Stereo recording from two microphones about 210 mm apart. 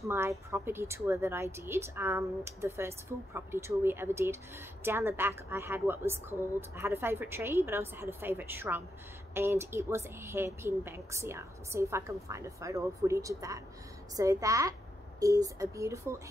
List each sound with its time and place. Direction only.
0.0 s a woman's voice: 15° right (ahead or behind)